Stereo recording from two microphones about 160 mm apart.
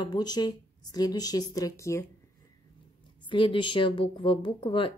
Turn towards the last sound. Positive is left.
turn(degrees=35)  # may be behind; listen again after turning